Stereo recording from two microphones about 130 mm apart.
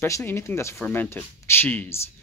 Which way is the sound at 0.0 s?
20° left (ahead or behind).